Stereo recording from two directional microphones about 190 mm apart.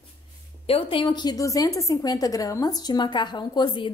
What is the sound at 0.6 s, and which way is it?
A woman's voice, 30° left (ahead or behind).